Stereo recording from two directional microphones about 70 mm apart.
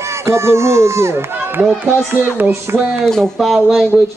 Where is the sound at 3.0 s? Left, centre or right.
Centre.